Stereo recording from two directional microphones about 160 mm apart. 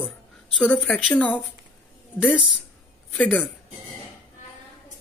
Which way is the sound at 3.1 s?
10° left (ahead or behind).